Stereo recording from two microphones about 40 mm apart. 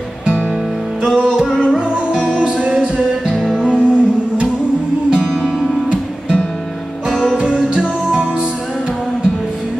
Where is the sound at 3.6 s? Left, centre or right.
Right.